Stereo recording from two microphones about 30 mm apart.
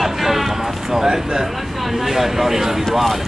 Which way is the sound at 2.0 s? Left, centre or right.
Centre.